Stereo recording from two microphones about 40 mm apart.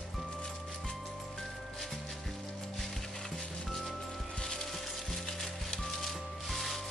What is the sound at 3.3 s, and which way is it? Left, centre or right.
Music, centre.